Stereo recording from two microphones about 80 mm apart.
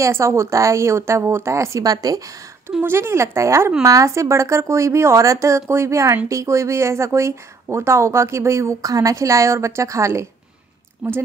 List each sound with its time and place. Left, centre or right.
0.0 s a woman's voice: right
2.8 s a woman's voice: right
11.0 s a woman's voice: centre